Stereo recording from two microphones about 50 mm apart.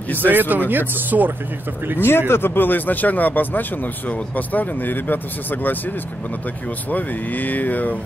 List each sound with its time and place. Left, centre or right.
0.2 s speech: right
2.0 s speech: left
6.9 s speech: left